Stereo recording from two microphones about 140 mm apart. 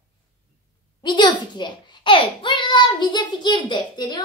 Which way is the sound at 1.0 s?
30° left (ahead or behind).